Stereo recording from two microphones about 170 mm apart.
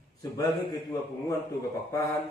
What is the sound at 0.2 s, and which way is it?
Speech, 20° left (ahead or behind).